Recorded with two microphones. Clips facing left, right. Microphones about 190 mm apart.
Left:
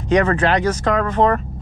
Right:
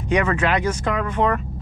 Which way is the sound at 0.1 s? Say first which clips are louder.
Left 4 dB; 35° left (ahead or behind).